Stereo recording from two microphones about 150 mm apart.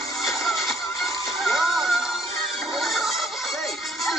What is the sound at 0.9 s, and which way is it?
Music, 20° left (ahead or behind).